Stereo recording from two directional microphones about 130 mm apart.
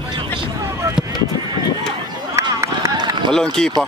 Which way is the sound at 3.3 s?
5° left (ahead or behind).